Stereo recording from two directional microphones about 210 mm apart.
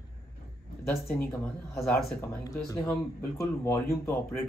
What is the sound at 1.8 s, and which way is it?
A man's voice, 10° left (ahead or behind).